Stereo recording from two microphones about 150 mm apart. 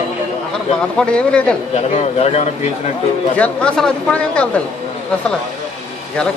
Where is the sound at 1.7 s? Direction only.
45° left (ahead or behind).